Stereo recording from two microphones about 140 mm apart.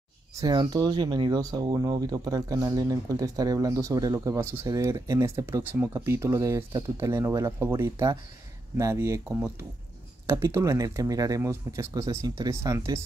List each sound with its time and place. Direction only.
0.4 s speech: 30° right (ahead or behind)